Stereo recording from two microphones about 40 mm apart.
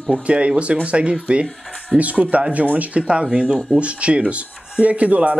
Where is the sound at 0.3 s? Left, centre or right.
Right.